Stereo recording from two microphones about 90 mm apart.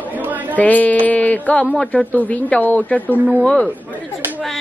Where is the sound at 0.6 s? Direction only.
15° left (ahead or behind).